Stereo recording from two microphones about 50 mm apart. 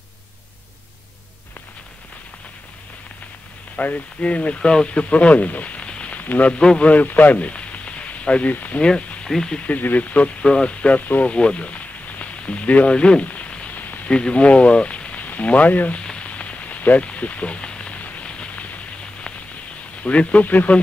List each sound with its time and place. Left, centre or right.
3.7 s speech: left
6.1 s speech: left
6.5 s speech: centre
6.9 s speech: left
8.8 s speech: centre
9.6 s speech: left
11.2 s a sound: left
13.7 s a sound: left
14.0 s speech: left
16.0 s rain on surface: left
18.0 s a sound: left
20.0 s speech: left